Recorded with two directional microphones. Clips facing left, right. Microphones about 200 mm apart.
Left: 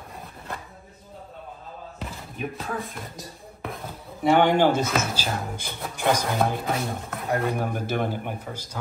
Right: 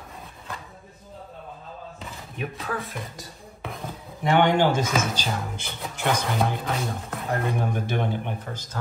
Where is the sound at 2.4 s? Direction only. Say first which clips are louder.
Even; centre (ahead or behind).